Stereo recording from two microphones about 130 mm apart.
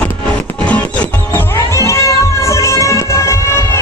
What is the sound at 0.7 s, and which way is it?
Music, 10° left (ahead or behind).